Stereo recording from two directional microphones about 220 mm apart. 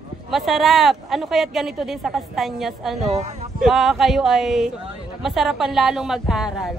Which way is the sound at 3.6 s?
Centre (ahead or behind).